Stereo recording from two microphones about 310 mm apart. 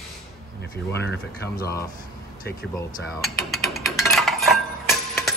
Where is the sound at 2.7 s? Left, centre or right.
Centre.